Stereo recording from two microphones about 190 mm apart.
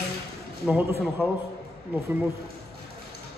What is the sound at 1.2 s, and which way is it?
Speech, 10° right (ahead or behind).